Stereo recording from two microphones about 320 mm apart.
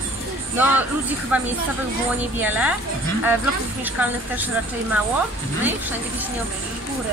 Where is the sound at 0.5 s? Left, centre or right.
Centre.